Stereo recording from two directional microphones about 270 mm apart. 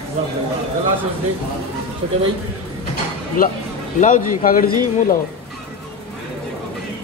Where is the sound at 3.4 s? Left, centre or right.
Left.